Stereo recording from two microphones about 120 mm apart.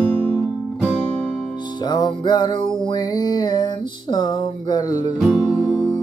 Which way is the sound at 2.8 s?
35° left (ahead or behind).